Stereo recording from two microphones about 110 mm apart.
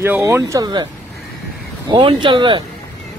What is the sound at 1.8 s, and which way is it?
Speech, 45° right (ahead or behind).